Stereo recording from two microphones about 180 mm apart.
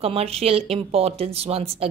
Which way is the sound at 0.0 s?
35° right (ahead or behind).